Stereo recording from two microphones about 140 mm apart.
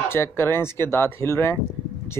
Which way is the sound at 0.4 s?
15° left (ahead or behind).